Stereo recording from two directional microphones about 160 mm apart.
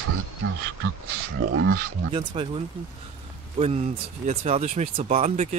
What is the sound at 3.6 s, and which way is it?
Speech, 45° right (ahead or behind).